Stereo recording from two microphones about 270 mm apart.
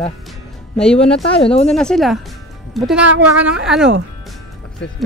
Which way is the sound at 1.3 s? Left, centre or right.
Left.